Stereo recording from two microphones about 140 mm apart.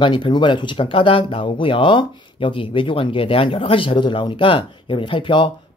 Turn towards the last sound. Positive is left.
turn(degrees=35)  # may be behind; listen again after turning